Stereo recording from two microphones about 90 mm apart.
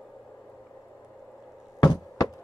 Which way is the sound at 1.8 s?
45° left (ahead or behind).